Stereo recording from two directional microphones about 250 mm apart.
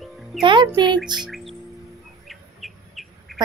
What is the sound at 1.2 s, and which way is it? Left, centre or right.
Chirp, centre.